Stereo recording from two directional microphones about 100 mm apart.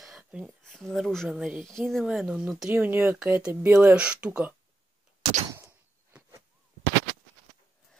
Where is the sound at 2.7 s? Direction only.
20° right (ahead or behind).